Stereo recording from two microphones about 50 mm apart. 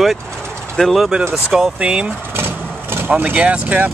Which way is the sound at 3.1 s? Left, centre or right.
Right.